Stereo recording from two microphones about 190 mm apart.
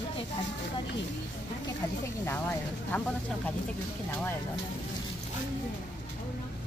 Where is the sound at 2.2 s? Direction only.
10° left (ahead or behind).